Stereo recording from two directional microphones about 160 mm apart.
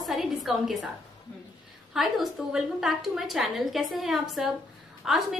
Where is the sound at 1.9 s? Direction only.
Centre (ahead or behind).